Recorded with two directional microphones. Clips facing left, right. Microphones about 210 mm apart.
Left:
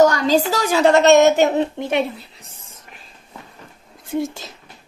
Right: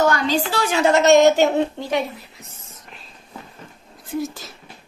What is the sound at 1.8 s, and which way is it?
Speech, 25° left (ahead or behind).